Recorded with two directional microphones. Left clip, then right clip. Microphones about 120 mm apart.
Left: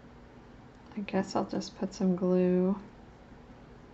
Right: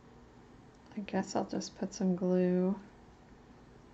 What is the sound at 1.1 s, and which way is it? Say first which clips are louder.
Speech: left 3 dB; 50° right (ahead or behind).